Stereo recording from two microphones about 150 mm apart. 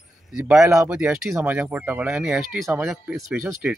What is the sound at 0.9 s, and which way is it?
Speech, 5° right (ahead or behind).